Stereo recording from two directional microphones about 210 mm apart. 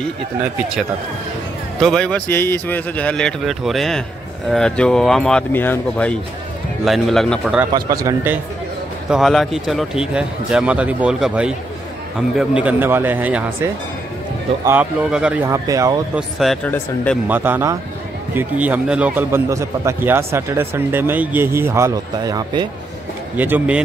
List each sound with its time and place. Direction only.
1.8 s a man's voice: 5° left (ahead or behind)
7.7 s a man's voice: 15° right (ahead or behind)
9.1 s a man's voice: centre (ahead or behind); by 16.0 s 15° right (ahead or behind)
16.2 s a man's voice: centre (ahead or behind)
17.3 s a man's voice: 10° right (ahead or behind)
23.3 s a man's voice: 10° right (ahead or behind)